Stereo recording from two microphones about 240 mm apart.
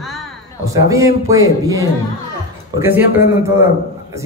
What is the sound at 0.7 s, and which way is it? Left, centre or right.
A man's voice, centre.